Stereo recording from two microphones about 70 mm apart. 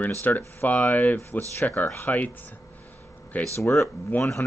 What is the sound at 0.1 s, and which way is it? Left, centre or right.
Speech, left.